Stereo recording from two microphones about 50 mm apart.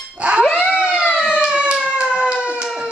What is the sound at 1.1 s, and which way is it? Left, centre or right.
Siren, centre.